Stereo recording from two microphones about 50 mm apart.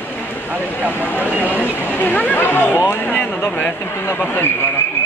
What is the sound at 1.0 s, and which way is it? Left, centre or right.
Speech, left.